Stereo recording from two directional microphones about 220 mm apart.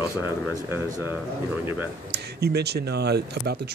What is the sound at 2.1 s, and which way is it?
Speech, 45° right (ahead or behind).